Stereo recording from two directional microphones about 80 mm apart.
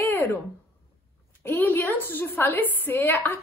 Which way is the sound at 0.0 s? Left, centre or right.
Left.